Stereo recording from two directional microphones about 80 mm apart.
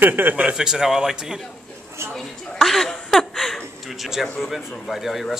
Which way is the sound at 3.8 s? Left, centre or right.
Centre.